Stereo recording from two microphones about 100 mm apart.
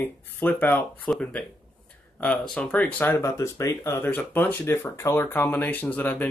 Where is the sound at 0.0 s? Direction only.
20° left (ahead or behind).